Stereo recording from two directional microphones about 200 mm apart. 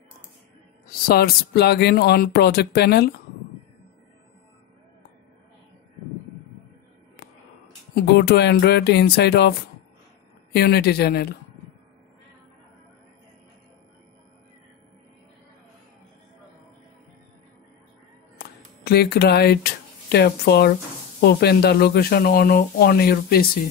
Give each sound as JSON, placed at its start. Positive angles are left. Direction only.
{"t": 0.8, "sound": "speech", "side_deg": 50}
{"t": 7.9, "sound": "speech", "side_deg": 55}
{"t": 18.4, "sound": "speech", "side_deg": 50}